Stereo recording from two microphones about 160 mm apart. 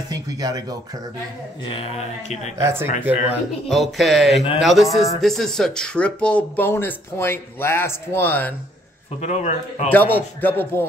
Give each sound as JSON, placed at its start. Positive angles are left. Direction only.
{"t": 0.1, "sound": "speech", "side_deg": -25}
{"t": 1.7, "sound": "speech", "side_deg": 35}
{"t": 2.6, "sound": "speech", "side_deg": -15}
{"t": 3.6, "sound": "speech", "side_deg": 0}
{"t": 9.2, "sound": "speech", "side_deg": 45}
{"t": 9.9, "sound": "speech", "side_deg": 10}